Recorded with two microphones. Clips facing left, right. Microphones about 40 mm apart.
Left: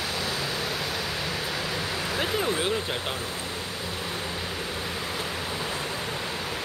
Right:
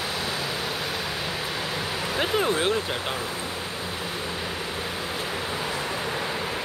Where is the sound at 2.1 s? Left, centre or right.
Centre.